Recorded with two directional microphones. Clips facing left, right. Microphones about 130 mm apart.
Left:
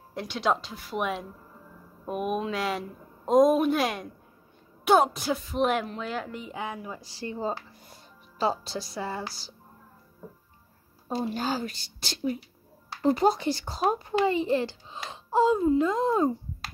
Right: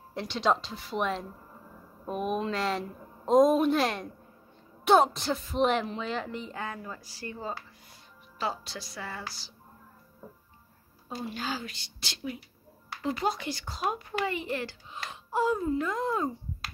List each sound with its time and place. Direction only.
0.1 s speech: 5° left (ahead or behind)
6.5 s speech: 15° left (ahead or behind)
7.0 s speech: 30° left (ahead or behind)
11.1 s a woman's voice: 40° left (ahead or behind)